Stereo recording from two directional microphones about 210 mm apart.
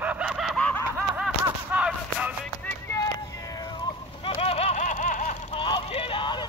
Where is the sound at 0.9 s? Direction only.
5° right (ahead or behind).